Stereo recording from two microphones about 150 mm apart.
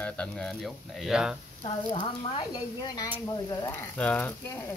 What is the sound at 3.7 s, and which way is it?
Speech, 10° left (ahead or behind).